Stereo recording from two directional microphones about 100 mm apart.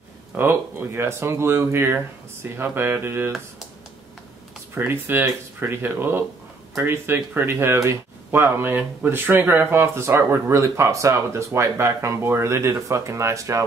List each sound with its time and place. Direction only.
0.3 s speech: 20° right (ahead or behind)
4.7 s speech: 20° right (ahead or behind)